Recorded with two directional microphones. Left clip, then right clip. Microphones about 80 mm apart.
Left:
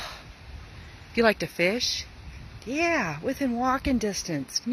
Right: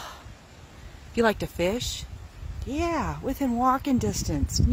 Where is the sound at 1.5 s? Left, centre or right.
Right.